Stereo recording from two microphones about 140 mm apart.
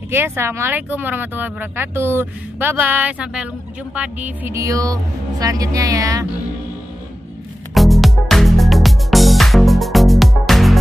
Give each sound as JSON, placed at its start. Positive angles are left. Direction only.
{"t": 0.1, "sound": "speech", "side_deg": -15}
{"t": 7.7, "sound": "music", "side_deg": 0}